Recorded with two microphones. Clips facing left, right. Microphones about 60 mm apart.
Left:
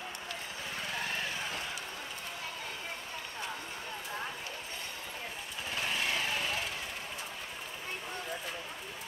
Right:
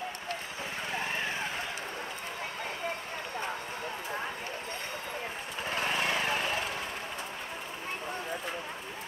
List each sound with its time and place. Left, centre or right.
5.7 s lawn mower: right